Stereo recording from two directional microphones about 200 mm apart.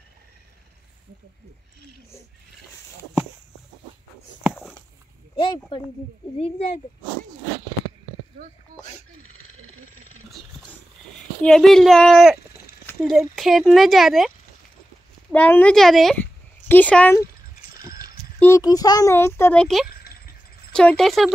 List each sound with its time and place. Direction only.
5.7 s speech: 25° left (ahead or behind)
8.7 s speech: 40° right (ahead or behind)
11.4 s speech: centre (ahead or behind)
15.3 s speech: 10° left (ahead or behind)
18.4 s a child's voice: 15° left (ahead or behind)
19.9 s a sound: 50° left (ahead or behind)
20.7 s speech: 5° left (ahead or behind)